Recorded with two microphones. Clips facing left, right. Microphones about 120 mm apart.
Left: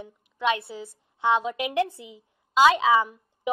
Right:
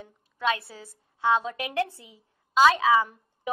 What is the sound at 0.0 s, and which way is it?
A woman's voice, 20° left (ahead or behind).